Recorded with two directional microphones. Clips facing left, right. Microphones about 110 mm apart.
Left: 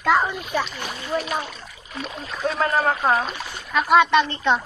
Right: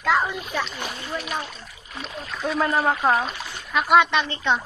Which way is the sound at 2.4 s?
5° right (ahead or behind).